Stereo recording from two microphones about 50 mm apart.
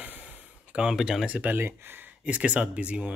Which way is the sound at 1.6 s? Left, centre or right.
Right.